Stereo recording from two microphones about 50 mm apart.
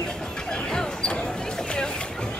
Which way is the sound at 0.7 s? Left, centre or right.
Centre.